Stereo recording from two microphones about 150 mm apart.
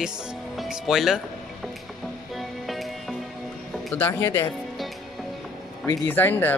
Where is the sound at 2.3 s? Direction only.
Centre (ahead or behind).